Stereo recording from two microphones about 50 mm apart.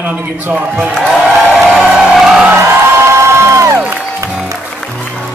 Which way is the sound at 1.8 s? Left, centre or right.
Centre.